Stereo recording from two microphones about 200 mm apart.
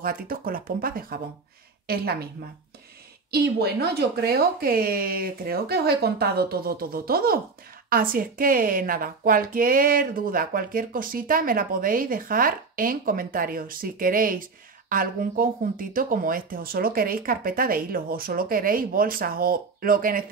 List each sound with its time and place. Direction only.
0.0 s a woman's voice: 45° right (ahead or behind)
3.3 s a woman's voice: 50° right (ahead or behind)